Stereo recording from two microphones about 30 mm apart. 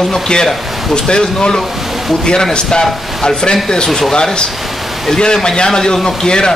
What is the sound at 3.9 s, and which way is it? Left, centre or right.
Speech, centre.